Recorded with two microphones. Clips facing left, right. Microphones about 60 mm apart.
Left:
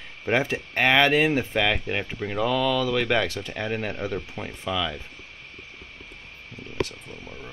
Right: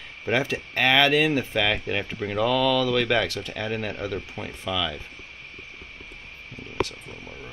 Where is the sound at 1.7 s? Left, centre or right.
Centre.